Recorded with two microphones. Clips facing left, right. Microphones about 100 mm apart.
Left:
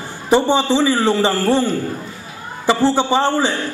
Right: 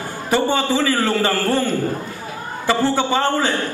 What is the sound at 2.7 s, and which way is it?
Speech, 20° left (ahead or behind).